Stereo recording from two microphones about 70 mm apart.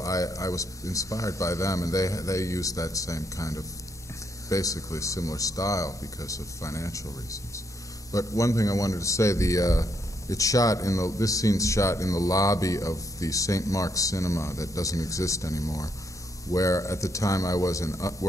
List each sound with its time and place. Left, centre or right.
0.0 s a man's voice: left